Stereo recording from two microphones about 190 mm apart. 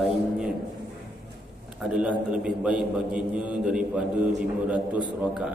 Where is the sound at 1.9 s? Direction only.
5° right (ahead or behind).